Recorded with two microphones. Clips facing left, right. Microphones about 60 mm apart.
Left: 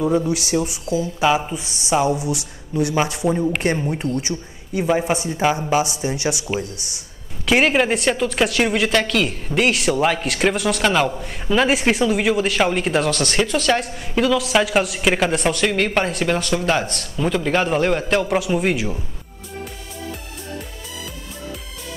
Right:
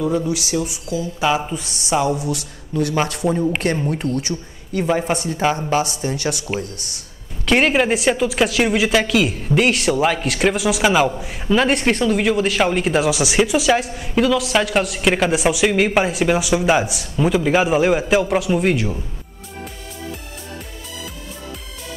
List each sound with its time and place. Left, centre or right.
0.3 s speech: left
1.2 s speech: centre
4.1 s speech: centre
6.5 s speech: right
7.4 s speech: centre